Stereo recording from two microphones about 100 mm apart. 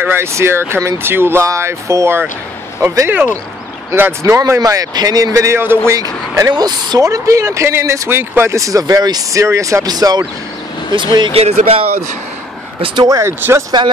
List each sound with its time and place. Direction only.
0.0 s speech: 25° right (ahead or behind)
5.9 s speech: 40° right (ahead or behind)
7.1 s speech: 30° right (ahead or behind)
10.9 s speech: 50° right (ahead or behind)
11.3 s speech: 85° right
13.0 s speech: 35° right (ahead or behind)
13.4 s speech: 25° right (ahead or behind)